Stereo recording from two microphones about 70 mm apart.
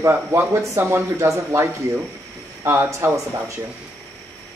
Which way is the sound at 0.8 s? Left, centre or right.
Right.